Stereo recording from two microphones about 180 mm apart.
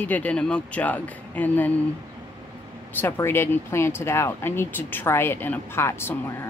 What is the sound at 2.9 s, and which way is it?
Speech, 10° left (ahead or behind).